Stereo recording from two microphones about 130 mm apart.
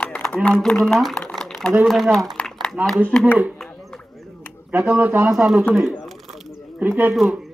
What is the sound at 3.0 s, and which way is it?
Speech, 10° left (ahead or behind).